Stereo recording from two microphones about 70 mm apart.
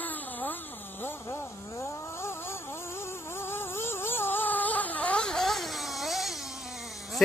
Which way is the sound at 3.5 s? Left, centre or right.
Left.